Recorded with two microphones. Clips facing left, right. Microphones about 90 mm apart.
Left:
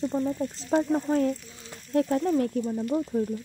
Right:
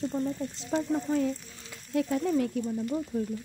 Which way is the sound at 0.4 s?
35° left (ahead or behind).